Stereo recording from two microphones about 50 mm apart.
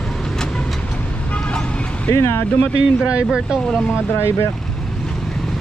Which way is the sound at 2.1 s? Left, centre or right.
Left.